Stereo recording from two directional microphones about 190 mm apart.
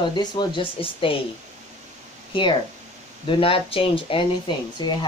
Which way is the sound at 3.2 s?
30° left (ahead or behind).